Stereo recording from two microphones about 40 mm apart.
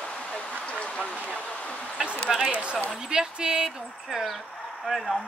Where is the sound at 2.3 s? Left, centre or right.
Centre.